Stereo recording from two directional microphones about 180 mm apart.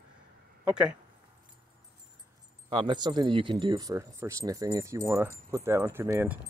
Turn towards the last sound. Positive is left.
turn(degrees=-15)  # may be behind; listen again after turning